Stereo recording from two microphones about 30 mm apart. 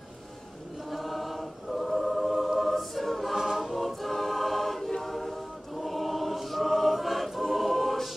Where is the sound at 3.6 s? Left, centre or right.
Centre.